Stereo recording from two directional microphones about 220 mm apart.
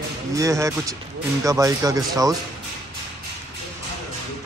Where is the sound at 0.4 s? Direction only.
15° right (ahead or behind).